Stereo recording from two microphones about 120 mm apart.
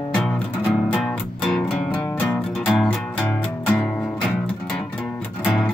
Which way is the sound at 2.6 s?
Centre (ahead or behind).